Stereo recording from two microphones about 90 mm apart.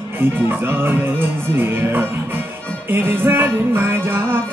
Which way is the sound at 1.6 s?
25° right (ahead or behind).